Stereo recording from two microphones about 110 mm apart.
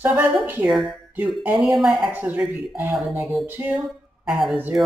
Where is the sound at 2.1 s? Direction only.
15° right (ahead or behind).